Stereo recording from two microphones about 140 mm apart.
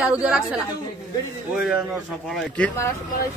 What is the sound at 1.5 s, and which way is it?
Speech, 10° right (ahead or behind).